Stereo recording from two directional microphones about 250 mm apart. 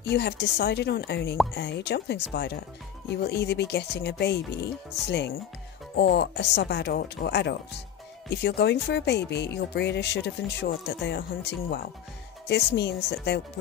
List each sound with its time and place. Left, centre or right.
0.0 s speech: left
12.4 s speech: left